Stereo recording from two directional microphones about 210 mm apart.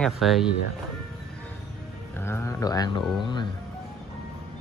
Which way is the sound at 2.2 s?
10° left (ahead or behind).